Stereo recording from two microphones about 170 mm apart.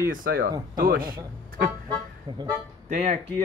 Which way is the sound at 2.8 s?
45° right (ahead or behind).